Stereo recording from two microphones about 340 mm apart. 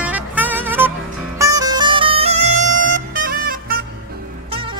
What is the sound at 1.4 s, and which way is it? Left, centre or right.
Music, centre.